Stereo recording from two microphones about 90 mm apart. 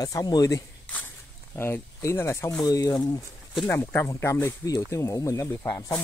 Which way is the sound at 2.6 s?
45° left (ahead or behind).